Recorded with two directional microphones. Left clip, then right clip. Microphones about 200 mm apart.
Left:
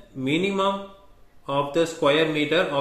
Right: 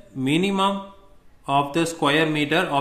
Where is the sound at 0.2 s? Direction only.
45° right (ahead or behind).